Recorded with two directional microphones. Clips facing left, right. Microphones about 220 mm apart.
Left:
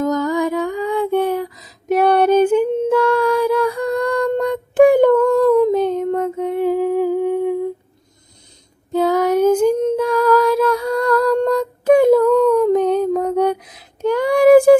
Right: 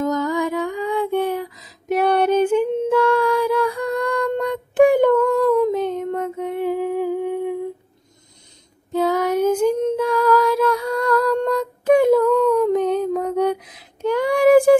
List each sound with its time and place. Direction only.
0.0 s music: 40° left (ahead or behind)
1.9 s female singing: 40° left (ahead or behind)
8.9 s child singing: 40° left (ahead or behind)
10.1 s a sound: 40° left (ahead or behind)